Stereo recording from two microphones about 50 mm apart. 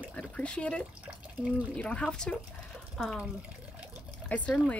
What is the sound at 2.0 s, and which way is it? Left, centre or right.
Speech, centre.